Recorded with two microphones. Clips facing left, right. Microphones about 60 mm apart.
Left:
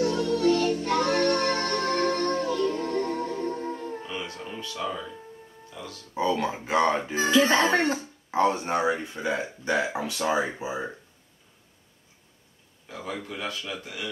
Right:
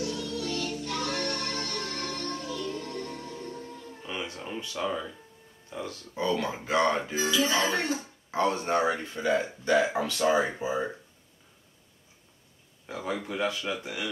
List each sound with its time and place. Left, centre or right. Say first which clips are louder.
0.0 s music: left 10 dB; left
4.2 s music: even; centre
5.7 s speech: right 4 dB; right
6.1 s speech: left 3 dB; left
7.2 s speech: left 9 dB; left
8.3 s speech: left 3 dB; left
12.8 s speech: right 2 dB; right